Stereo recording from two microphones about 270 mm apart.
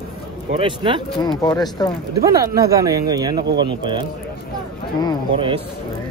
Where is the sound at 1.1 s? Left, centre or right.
Centre.